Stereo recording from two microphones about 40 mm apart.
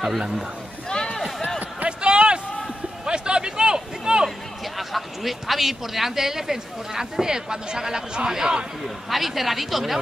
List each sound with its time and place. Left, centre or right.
1.9 s a sound: right
4.7 s speech: centre
8.8 s speech: centre